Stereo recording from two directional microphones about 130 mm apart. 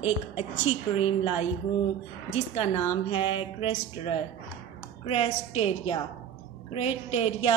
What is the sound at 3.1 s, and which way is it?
A woman's voice, 45° left (ahead or behind).